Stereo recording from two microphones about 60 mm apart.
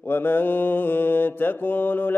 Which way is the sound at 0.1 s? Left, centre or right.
Left.